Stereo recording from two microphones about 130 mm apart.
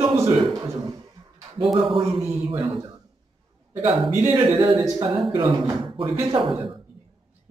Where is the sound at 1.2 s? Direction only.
25° right (ahead or behind).